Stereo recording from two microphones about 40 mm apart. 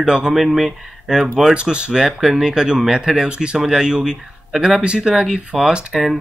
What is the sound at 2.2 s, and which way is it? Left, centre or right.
Speech, centre.